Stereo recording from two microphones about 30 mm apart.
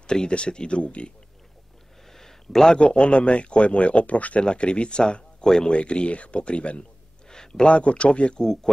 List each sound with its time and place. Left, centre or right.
0.0 s speech: left
2.0 s a sound: centre
2.9 s speech: left
4.5 s speech: left
5.4 s speech: centre
5.7 s speech: left
7.2 s a sound: left
7.6 s speech: left